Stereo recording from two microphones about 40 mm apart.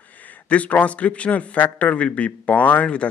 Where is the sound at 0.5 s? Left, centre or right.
Left.